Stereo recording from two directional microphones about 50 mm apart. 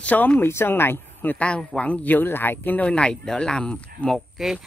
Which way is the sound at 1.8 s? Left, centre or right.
Left.